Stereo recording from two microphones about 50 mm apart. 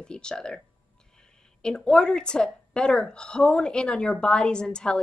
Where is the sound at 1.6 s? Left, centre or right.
Centre.